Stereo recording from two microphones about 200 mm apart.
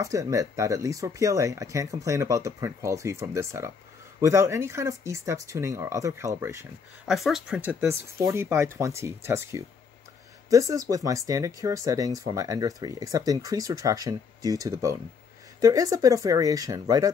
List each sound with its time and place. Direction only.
0.0 s speech: 15° right (ahead or behind)
7.1 s speech: centre (ahead or behind)
7.9 s speech: 15° right (ahead or behind)